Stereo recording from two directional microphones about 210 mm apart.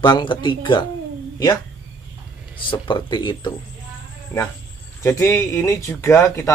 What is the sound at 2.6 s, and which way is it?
Speech, 20° left (ahead or behind).